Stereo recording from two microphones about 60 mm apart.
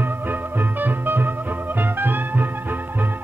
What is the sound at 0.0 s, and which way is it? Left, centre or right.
Music, right.